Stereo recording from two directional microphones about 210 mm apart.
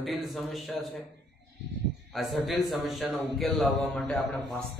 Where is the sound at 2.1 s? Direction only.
Centre (ahead or behind).